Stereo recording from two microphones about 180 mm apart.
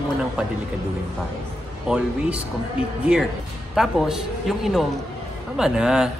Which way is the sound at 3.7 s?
Centre (ahead or behind).